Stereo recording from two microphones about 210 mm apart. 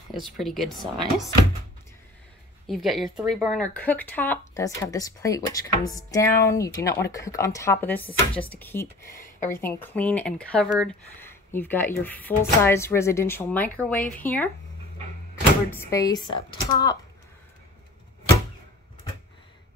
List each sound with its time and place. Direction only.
0.1 s speech: centre (ahead or behind)
2.6 s speech: centre (ahead or behind)
15.7 s speech: 15° left (ahead or behind)